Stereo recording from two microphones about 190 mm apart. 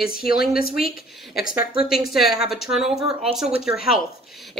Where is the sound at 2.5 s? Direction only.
Centre (ahead or behind).